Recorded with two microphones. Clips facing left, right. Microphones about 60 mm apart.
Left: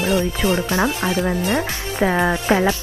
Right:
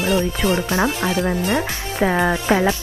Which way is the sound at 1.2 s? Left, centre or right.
Centre.